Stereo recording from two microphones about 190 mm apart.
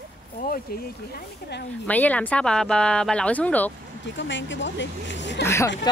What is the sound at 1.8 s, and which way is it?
Speech, 10° left (ahead or behind).